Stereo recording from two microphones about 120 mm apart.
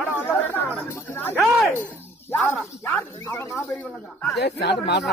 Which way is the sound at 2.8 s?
20° left (ahead or behind).